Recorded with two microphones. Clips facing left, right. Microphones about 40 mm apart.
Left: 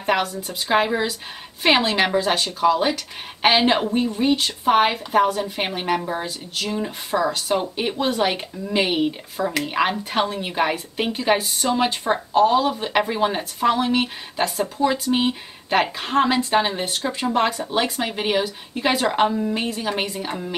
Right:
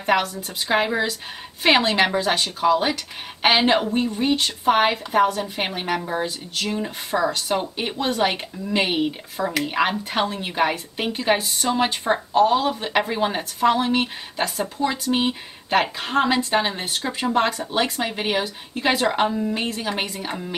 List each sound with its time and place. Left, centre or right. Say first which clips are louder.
0.0 s speech: right 1 dB; centre